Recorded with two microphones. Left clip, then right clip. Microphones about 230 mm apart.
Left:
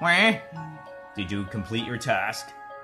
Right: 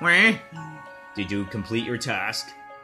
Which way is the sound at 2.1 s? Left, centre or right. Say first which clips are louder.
Left 4 dB; centre.